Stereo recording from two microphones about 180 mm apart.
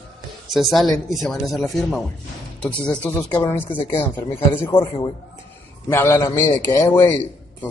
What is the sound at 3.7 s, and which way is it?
Speech, 30° left (ahead or behind).